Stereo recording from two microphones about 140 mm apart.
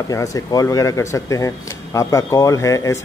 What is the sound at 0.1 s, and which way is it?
A man's voice, 25° left (ahead or behind).